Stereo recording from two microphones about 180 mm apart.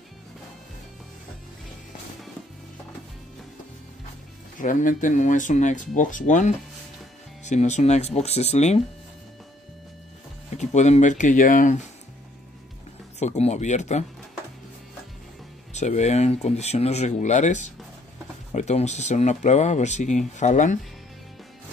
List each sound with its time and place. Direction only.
4.6 s speech: 45° left (ahead or behind)
10.6 s speech: 40° left (ahead or behind)
13.2 s speech: 40° left (ahead or behind)
15.7 s speech: 40° left (ahead or behind)